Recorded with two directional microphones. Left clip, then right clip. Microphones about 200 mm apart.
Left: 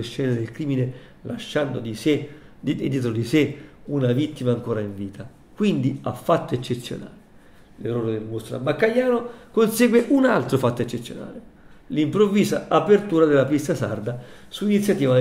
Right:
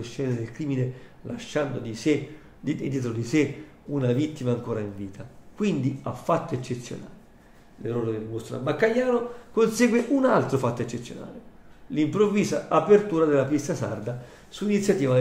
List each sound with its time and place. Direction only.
0.0 s speech: 30° left (ahead or behind)
3.9 s speech: 10° left (ahead or behind); by 7.0 s 30° left (ahead or behind)
7.8 s speech: 10° left (ahead or behind)
9.6 s speech: 25° left (ahead or behind)